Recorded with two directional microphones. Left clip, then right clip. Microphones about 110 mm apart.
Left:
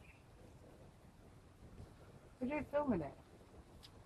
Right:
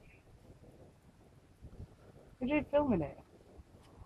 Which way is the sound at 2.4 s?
40° right (ahead or behind).